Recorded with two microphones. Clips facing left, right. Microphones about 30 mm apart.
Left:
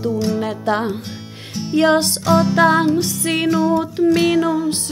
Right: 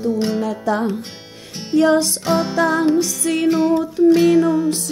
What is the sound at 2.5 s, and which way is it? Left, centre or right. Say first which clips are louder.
Music: left 2 dB; left.